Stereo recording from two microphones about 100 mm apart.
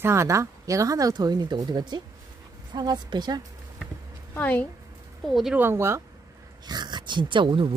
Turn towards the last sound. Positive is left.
turn(degrees=-55)  # may be behind; listen again after turning